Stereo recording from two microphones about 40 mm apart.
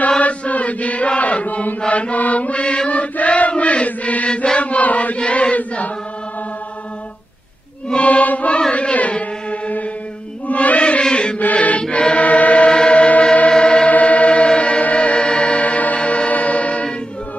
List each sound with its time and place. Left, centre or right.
0.2 s chant: left
8.0 s music: left
8.7 s chant: left
10.5 s music: left
10.8 s chant: left
11.5 s chant: left
11.9 s choir: left
12.6 s chant: left
12.9 s music: left
13.5 s a sound: left
13.8 s music: left
16.0 s music: left
16.3 s music: left